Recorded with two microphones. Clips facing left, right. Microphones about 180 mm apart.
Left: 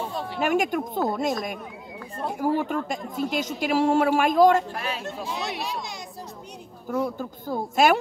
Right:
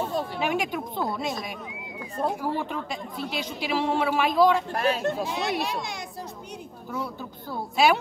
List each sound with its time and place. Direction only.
0.4 s a man's voice: 45° left (ahead or behind)
2.4 s a man's voice: 45° left (ahead or behind)
4.7 s speech: 45° right (ahead or behind)
5.5 s a child's voice: centre (ahead or behind)
6.9 s a man's voice: 45° left (ahead or behind)